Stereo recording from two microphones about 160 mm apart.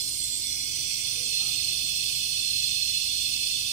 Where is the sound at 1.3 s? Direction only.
45° left (ahead or behind).